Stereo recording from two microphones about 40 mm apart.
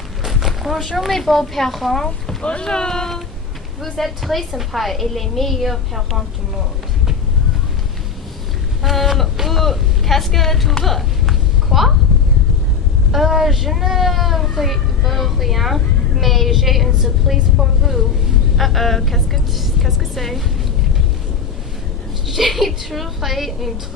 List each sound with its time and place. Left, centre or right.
0.2 s speech: centre
2.6 s speech: centre
3.8 s a woman's voice: centre
8.8 s a woman's voice: centre
11.0 s a sound: centre
13.1 s a woman's voice: centre
22.3 s a woman's voice: centre